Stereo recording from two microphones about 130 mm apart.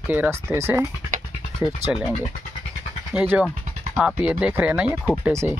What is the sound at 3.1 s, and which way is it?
Speech, 10° right (ahead or behind).